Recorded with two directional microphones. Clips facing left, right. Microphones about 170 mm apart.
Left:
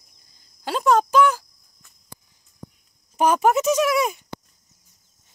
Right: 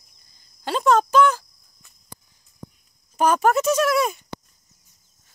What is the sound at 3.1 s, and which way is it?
Speech, 15° left (ahead or behind).